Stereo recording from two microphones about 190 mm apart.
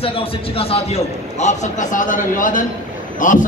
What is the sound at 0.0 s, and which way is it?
A man's voice, 30° left (ahead or behind).